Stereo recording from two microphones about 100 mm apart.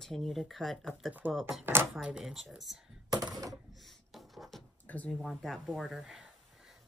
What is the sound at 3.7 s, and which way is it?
Writing, centre (ahead or behind).